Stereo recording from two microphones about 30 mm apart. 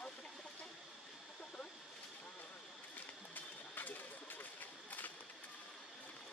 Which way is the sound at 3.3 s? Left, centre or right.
Left.